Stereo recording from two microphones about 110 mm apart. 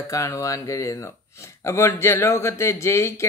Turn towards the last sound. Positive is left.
turn(degrees=25)  # may be behind; listen again after turning